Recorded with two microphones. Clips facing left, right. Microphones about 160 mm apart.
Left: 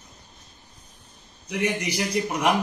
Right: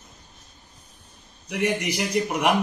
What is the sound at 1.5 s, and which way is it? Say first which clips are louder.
A man's voice: right 1 dB; centre (ahead or behind).